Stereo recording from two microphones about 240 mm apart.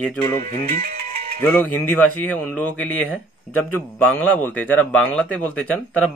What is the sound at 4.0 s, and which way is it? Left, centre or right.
Speech, centre.